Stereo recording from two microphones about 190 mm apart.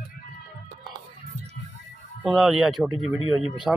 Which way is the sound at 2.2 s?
5° right (ahead or behind).